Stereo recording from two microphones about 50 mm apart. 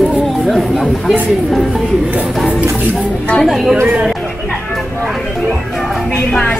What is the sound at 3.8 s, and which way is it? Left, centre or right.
Chatter, centre.